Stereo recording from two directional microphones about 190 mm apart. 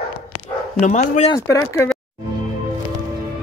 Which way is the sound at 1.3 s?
15° left (ahead or behind).